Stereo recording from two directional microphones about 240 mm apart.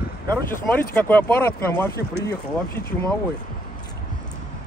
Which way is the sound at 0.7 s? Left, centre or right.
Centre.